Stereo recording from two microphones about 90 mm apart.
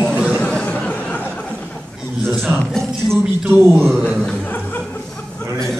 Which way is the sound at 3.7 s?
5° left (ahead or behind).